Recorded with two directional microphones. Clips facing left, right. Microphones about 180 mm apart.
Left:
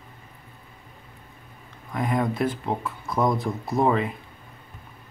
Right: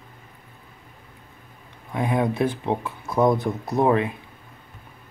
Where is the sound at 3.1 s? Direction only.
20° right (ahead or behind).